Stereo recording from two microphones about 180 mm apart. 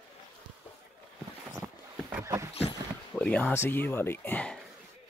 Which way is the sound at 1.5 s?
10° right (ahead or behind).